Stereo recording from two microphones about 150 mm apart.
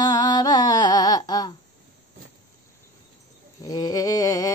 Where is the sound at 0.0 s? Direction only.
25° left (ahead or behind).